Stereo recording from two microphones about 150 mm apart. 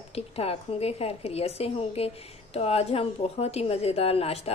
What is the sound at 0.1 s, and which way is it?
A woman's voice, 40° left (ahead or behind).